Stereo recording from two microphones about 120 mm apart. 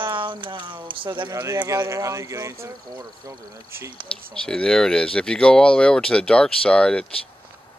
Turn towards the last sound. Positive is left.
turn(degrees=10)  # may be behind; listen again after turning